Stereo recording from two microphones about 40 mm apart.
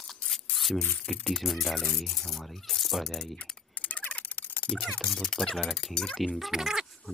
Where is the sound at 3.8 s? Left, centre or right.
Left.